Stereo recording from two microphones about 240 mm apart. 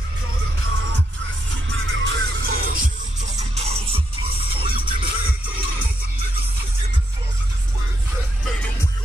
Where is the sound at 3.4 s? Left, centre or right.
Right.